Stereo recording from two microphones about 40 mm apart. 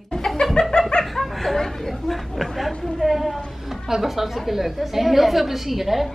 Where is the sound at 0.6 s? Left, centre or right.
Left.